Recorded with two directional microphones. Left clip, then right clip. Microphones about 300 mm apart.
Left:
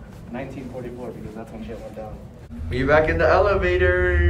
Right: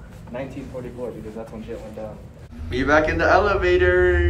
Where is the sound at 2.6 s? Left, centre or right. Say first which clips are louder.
Even; centre.